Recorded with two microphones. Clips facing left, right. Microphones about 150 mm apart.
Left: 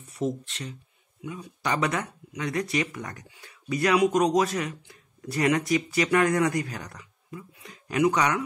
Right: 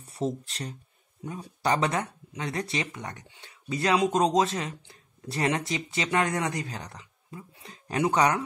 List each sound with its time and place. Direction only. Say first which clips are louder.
0.0 s speech: left 1 dB; 35° right (ahead or behind)